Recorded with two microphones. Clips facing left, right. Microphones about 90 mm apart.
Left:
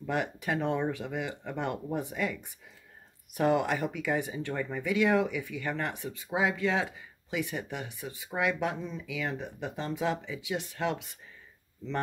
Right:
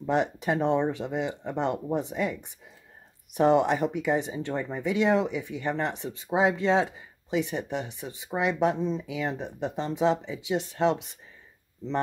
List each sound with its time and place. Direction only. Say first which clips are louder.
0.0 s speech: right 6 dB; 25° right (ahead or behind)